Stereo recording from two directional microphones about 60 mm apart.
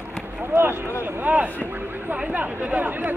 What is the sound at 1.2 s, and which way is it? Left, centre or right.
Vehicle, right.